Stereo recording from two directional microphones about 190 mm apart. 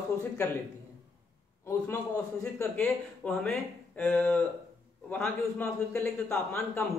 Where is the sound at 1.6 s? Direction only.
15° left (ahead or behind).